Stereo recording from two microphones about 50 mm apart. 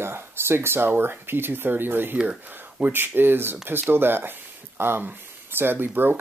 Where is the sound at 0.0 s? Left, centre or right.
Right.